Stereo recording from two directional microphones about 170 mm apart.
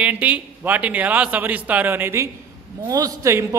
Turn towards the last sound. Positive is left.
turn(degrees=-15)  # may be behind; listen again after turning